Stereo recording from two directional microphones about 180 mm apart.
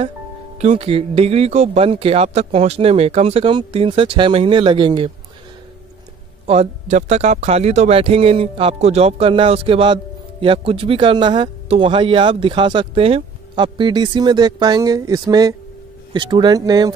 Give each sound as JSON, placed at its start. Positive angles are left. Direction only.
{"t": 0.6, "sound": "speech", "side_deg": -35}
{"t": 6.4, "sound": "speech", "side_deg": -35}